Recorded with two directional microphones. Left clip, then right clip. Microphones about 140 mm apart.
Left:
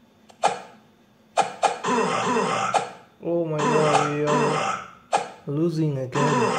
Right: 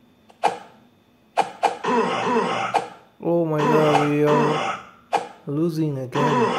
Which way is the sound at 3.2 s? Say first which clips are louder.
Right 4 dB; 40° right (ahead or behind).